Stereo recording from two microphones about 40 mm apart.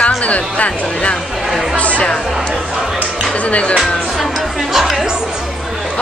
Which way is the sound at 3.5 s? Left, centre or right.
Left.